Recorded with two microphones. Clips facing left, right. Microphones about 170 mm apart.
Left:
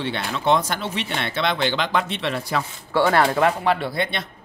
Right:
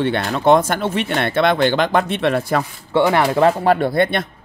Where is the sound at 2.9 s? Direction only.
20° right (ahead or behind).